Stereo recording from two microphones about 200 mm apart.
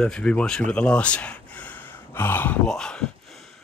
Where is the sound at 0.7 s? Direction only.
5° left (ahead or behind).